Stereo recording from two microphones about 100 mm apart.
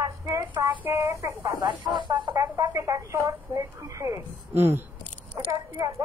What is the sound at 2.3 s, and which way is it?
Speech, 30° right (ahead or behind).